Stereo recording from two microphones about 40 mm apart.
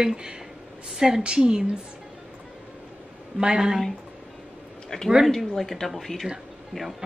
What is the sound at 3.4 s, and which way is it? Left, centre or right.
Speech, centre.